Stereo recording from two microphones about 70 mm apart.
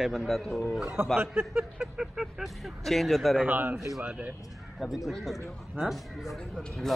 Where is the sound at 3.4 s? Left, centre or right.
Right.